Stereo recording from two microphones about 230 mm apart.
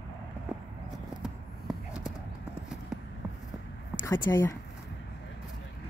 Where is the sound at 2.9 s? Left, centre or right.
Centre.